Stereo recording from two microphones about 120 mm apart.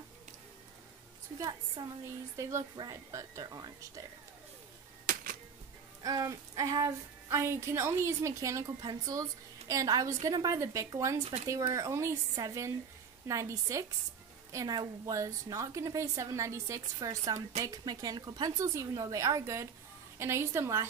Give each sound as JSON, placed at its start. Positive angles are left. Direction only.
{"t": 1.8, "sound": "speech", "side_deg": -30}
{"t": 5.1, "sound": "music", "side_deg": -90}
{"t": 6.0, "sound": "speech", "side_deg": -30}